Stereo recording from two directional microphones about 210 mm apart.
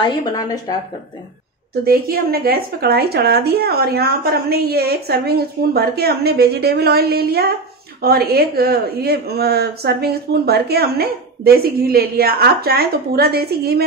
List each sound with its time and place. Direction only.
0.0 s speech: 20° left (ahead or behind)
1.9 s a woman's voice: 45° right (ahead or behind)